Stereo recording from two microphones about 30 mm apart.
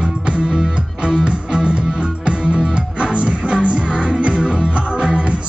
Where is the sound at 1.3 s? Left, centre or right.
Right.